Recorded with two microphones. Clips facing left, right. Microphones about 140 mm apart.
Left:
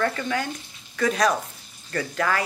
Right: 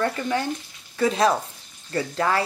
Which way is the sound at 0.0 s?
25° right (ahead or behind).